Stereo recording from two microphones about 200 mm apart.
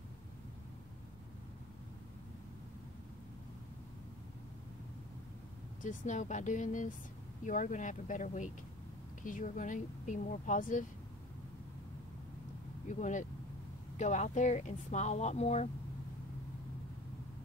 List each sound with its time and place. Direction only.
5.8 s speech: 40° left (ahead or behind)
12.8 s speech: 40° left (ahead or behind)